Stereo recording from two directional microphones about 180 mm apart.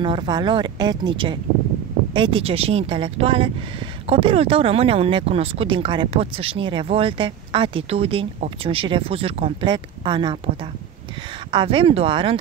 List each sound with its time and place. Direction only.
0.0 s speech: 25° right (ahead or behind)